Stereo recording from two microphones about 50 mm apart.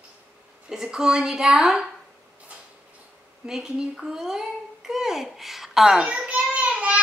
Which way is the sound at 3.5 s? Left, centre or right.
Centre.